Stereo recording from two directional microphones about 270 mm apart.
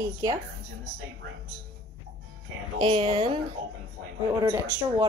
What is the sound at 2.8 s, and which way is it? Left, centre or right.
Speech, centre.